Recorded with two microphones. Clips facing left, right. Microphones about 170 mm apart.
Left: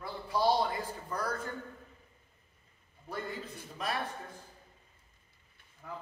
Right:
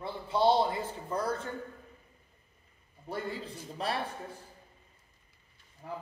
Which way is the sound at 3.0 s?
30° right (ahead or behind).